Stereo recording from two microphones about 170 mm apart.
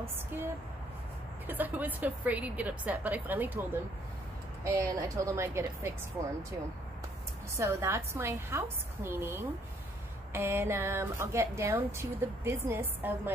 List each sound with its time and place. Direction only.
1.5 s a woman's voice: 10° right (ahead or behind)
4.6 s a woman's voice: 20° right (ahead or behind)
7.5 s a woman's voice: 15° right (ahead or behind)